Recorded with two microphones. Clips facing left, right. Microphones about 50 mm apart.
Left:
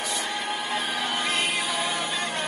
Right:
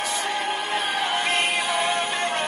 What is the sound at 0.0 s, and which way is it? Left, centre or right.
Music, right.